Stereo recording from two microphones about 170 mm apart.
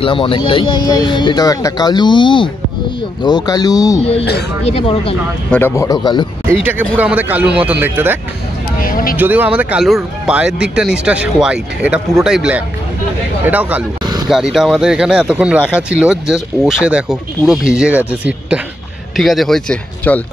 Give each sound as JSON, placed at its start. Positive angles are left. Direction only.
{"t": 0.0, "sound": "speech", "side_deg": 30}
{"t": 4.2, "sound": "speech", "side_deg": 75}
{"t": 4.6, "sound": "speech", "side_deg": 35}
{"t": 5.5, "sound": "speech", "side_deg": 15}
{"t": 6.5, "sound": "a man's voice", "side_deg": -10}
{"t": 8.8, "sound": "speech", "side_deg": 55}
{"t": 9.1, "sound": "a man's voice", "side_deg": -10}
{"t": 14.0, "sound": "vehicle", "side_deg": -25}
{"t": 14.3, "sound": "a man's voice", "side_deg": 0}